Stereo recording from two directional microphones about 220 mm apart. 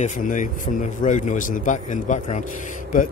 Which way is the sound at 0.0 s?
35° left (ahead or behind).